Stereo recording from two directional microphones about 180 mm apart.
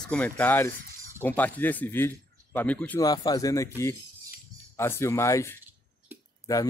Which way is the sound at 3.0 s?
20° left (ahead or behind).